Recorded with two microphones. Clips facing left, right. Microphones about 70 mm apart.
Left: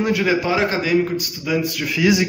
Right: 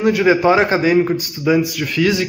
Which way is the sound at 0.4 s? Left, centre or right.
Right.